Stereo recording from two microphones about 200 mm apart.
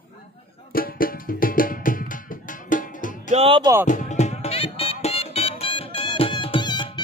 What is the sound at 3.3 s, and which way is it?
Music, 25° right (ahead or behind).